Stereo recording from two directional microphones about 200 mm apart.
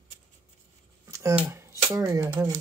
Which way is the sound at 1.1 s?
15° right (ahead or behind).